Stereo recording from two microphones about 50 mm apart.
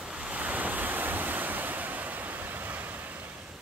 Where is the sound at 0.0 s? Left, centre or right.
Centre; by 3.2 s right.